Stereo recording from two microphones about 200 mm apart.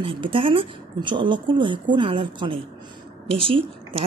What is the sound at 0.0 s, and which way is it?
Speech, 25° right (ahead or behind).